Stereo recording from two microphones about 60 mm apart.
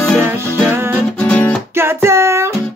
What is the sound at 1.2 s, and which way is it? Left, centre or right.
Music, left.